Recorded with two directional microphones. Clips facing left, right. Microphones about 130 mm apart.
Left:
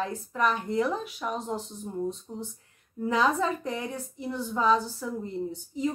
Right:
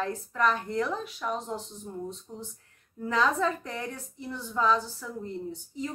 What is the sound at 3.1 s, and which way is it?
Speech, 15° left (ahead or behind).